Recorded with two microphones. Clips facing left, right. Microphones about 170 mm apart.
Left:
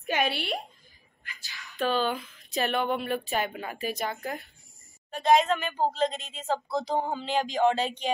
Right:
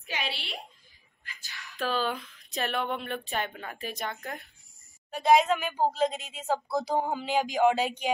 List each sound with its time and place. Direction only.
0.0 s a sound: 50° left (ahead or behind)
1.7 s speech: centre (ahead or behind)
5.1 s a woman's voice: 10° right (ahead or behind)